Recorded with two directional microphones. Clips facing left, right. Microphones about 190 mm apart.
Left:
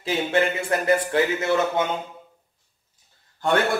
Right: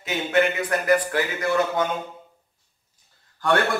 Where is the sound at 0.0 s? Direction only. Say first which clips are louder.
Even; 30° left (ahead or behind).